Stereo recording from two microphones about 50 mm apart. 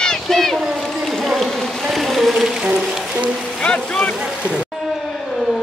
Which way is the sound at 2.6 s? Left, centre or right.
Right.